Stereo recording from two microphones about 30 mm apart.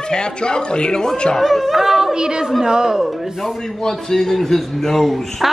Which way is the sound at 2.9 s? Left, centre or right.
Centre.